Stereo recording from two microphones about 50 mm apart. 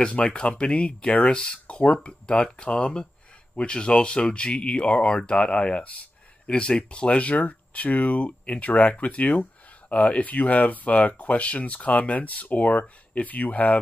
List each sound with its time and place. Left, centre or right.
0.0 s speech: centre